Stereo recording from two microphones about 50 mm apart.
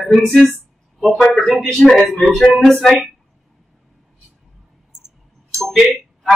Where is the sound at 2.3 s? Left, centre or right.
Centre.